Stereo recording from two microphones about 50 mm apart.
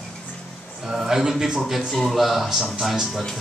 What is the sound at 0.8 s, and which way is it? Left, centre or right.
A man's voice, centre.